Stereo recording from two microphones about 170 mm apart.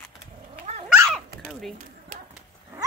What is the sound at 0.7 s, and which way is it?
Cat, 40° right (ahead or behind).